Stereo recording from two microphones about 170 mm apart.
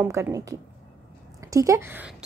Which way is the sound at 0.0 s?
15° right (ahead or behind).